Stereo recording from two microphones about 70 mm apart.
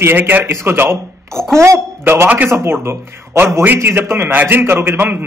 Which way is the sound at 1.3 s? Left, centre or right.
Centre.